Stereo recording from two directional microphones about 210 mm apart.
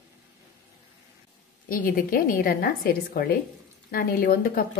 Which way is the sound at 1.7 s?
40° left (ahead or behind).